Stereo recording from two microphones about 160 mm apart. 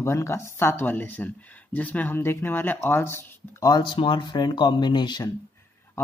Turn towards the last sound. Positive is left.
turn(degrees=25)  # may be behind; listen again after turning